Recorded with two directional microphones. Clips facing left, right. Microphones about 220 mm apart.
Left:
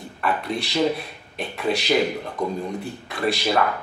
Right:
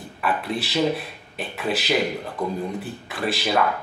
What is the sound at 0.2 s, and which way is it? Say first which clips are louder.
Speech: even; 5° right (ahead or behind).